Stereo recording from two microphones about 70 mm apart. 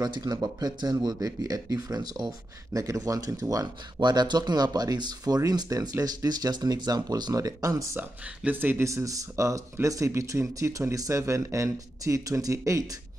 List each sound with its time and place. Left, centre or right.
0.0 s speech: right
1.0 s speech: right
3.0 s speech: right
3.6 s speech: right
8.5 s speech: right
8.8 s speech: right